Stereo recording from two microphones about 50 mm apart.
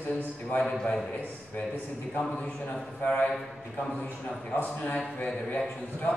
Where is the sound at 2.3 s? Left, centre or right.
Left.